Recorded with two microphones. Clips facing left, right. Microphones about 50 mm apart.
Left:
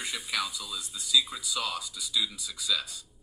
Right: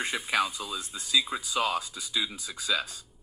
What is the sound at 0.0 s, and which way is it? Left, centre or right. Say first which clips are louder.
Speech: right 5 dB; right.